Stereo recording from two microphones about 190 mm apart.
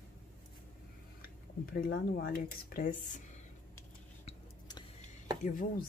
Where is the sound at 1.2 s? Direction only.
50° left (ahead or behind).